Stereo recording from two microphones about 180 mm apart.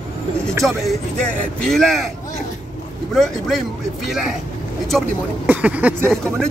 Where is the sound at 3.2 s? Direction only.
Centre (ahead or behind).